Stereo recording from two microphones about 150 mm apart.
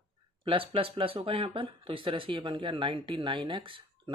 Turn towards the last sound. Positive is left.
turn(degrees=-35)  # may be behind; listen again after turning